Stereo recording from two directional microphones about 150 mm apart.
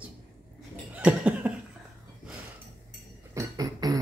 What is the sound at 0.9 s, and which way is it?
Cough, 10° right (ahead or behind).